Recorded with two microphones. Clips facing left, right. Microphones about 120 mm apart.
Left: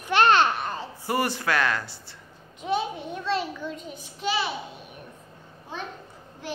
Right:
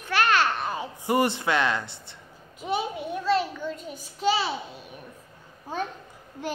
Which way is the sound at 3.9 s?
35° right (ahead or behind).